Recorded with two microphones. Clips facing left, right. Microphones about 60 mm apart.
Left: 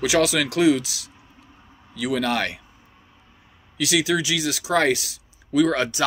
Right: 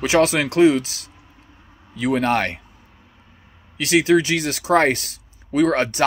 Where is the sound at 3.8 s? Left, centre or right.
Right.